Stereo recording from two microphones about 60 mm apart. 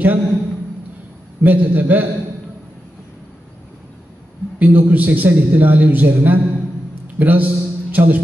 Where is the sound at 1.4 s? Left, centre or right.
Right.